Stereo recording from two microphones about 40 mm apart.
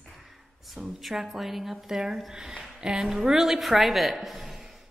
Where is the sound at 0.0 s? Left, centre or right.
Centre.